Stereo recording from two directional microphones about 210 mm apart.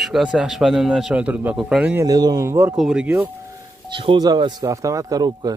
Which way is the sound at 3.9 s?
25° right (ahead or behind).